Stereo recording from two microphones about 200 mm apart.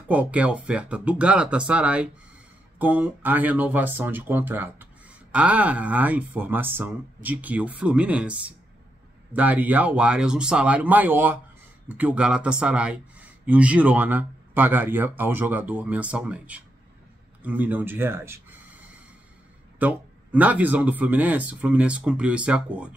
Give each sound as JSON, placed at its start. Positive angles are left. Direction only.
{"t": 0.1, "sound": "speech", "side_deg": -5}
{"t": 17.4, "sound": "gasp", "side_deg": -10}
{"t": 19.8, "sound": "speech", "side_deg": -5}